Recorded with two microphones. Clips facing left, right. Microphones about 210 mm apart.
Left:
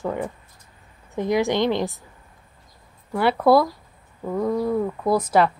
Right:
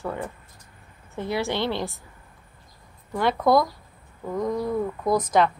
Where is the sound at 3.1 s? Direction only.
10° left (ahead or behind).